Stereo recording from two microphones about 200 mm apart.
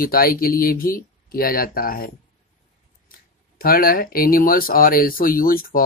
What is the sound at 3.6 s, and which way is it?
Speech, 50° left (ahead or behind).